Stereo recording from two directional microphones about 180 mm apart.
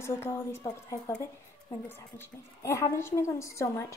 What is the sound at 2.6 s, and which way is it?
A woman's voice, 15° left (ahead or behind).